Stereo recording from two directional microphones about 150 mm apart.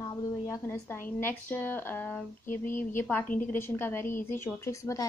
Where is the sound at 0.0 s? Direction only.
20° left (ahead or behind).